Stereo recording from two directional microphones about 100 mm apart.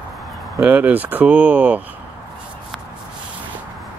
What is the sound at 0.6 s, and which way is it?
Speech, 20° right (ahead or behind).